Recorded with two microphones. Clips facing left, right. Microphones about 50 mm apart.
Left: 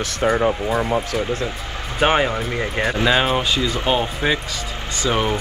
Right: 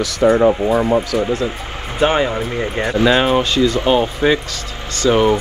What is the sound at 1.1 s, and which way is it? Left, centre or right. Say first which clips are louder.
Speech: right 5 dB; right.